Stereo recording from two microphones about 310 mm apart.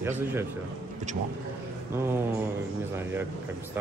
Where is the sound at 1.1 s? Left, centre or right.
Right.